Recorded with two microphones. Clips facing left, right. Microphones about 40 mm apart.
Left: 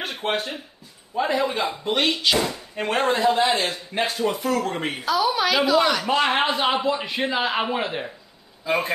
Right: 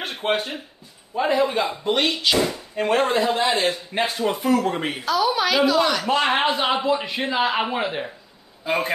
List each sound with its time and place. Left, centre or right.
0.0 s speech: centre
4.2 s speech: centre
4.6 s speech: centre